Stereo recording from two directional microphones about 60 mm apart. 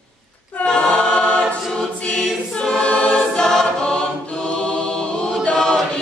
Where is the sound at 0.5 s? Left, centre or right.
Centre.